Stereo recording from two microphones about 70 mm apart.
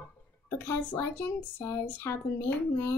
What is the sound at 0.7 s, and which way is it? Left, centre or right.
A woman's voice, left.